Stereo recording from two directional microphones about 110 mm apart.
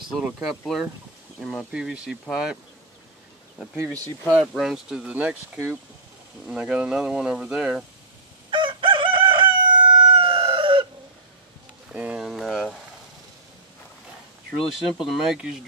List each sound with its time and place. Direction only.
0.1 s speech: centre (ahead or behind)
3.7 s speech: 25° right (ahead or behind)
4.6 s speech: 5° right (ahead or behind)
8.5 s crowing: 50° right (ahead or behind)
11.9 s a sound: 10° right (ahead or behind)
14.6 s speech: centre (ahead or behind)